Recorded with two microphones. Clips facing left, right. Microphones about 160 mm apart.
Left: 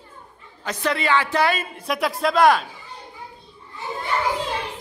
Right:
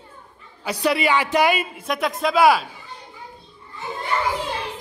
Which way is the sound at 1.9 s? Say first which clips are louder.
Left 1 dB; centre (ahead or behind).